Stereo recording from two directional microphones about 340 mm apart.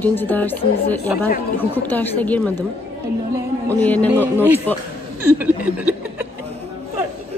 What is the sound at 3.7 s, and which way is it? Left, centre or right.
Speech, centre.